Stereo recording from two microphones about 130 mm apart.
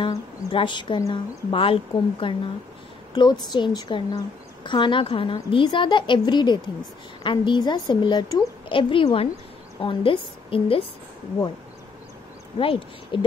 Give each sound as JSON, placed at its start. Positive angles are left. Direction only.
{"t": 0.5, "sound": "a woman's voice", "side_deg": 40}
{"t": 3.2, "sound": "a woman's voice", "side_deg": 30}
{"t": 12.5, "sound": "a woman's voice", "side_deg": 40}